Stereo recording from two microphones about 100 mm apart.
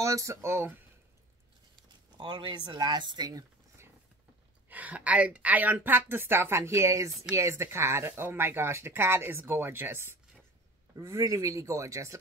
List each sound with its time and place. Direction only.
0.0 s a woman's voice: 30° right (ahead or behind)
2.1 s speech: 45° right (ahead or behind)
4.6 s a woman's voice: 15° right (ahead or behind); by 12.2 s 30° right (ahead or behind)